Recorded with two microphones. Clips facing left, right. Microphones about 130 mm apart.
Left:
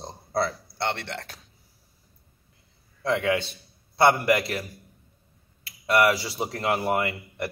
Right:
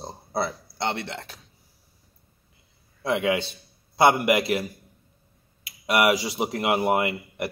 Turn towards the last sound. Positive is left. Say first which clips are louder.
# right 2 dB
turn(degrees=-20)  # may be behind; listen again after turning